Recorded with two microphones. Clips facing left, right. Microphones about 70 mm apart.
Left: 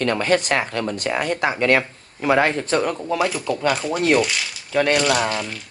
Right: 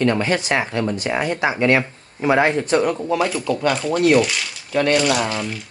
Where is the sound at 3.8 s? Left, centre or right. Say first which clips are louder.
Right 6 dB; centre.